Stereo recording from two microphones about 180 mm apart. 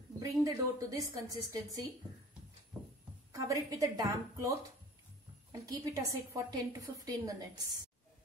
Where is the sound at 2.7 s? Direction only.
5° right (ahead or behind).